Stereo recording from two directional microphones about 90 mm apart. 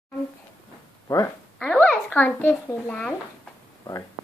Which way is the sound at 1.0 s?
40° left (ahead or behind).